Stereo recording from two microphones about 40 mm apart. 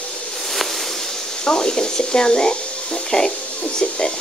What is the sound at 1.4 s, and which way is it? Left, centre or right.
Speech, left.